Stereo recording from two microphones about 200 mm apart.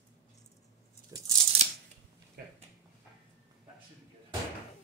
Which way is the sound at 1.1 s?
20° right (ahead or behind).